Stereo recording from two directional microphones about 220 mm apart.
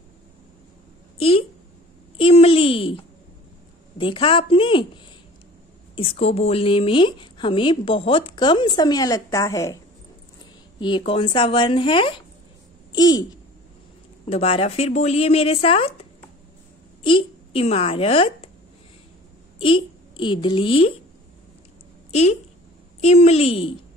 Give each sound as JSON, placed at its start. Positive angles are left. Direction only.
{"t": 1.1, "sound": "a sound", "side_deg": 25}
{"t": 2.1, "sound": "a woman's voice", "side_deg": 25}
{"t": 5.9, "sound": "a woman's voice", "side_deg": 25}
{"t": 10.8, "sound": "a woman's voice", "side_deg": 20}
{"t": 14.2, "sound": "a woman's voice", "side_deg": 25}
{"t": 19.6, "sound": "a child's voice", "side_deg": 25}
{"t": 22.1, "sound": "a woman's voice", "side_deg": 30}